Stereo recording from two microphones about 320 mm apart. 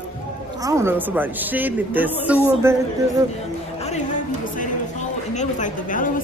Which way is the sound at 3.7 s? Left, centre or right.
Left.